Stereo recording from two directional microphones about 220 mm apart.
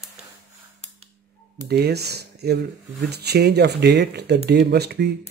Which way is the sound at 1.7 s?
45° right (ahead or behind).